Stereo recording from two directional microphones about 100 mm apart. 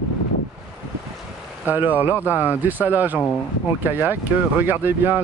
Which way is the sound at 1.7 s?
15° right (ahead or behind).